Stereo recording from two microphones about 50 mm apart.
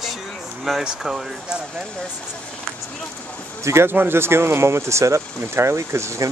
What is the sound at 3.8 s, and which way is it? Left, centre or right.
Speech, right.